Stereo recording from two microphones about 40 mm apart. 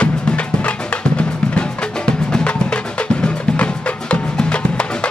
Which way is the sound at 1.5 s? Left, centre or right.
Left.